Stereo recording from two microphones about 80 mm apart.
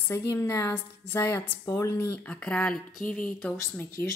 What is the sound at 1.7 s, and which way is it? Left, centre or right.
Speech, left.